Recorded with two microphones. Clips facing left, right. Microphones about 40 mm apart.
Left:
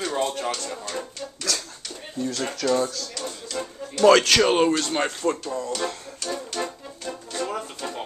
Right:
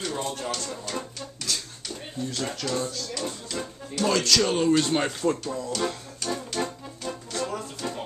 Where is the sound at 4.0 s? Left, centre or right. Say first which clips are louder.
Left 9 dB; left.